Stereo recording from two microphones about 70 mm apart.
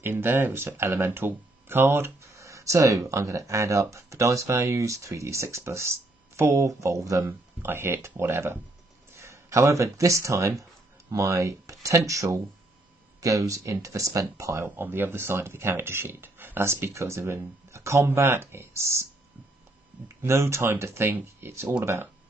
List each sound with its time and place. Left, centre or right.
0.0 s speech: right
7.2 s speech: right
14.8 s speech: right
20.2 s speech: right